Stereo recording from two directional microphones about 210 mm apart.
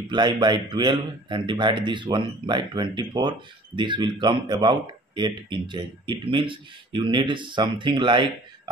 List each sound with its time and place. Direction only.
0.1 s a man's voice: 20° right (ahead or behind)